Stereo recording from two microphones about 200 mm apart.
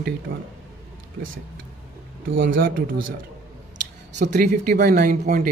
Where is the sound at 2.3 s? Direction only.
75° right (ahead or behind).